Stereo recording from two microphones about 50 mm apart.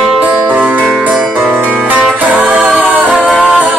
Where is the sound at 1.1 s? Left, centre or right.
Centre.